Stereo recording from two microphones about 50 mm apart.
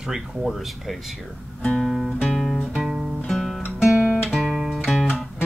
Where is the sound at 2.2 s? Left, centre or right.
Centre.